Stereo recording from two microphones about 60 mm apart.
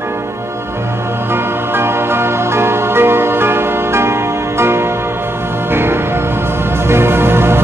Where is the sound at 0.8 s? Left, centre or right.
Right.